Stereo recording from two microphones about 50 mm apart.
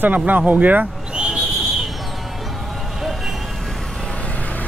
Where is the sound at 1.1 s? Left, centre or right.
Right.